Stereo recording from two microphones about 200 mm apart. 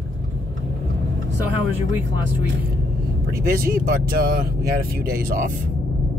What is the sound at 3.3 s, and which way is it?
Speech, 45° right (ahead or behind).